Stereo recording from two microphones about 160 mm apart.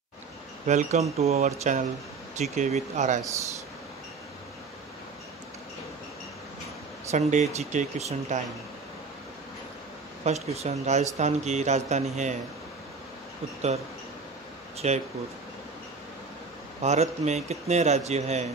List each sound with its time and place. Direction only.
0.7 s speech: 50° right (ahead or behind)
7.1 s speech: 45° right (ahead or behind)
10.2 s speech: 40° right (ahead or behind)
14.8 s speech: 45° right (ahead or behind)
16.8 s speech: 45° right (ahead or behind)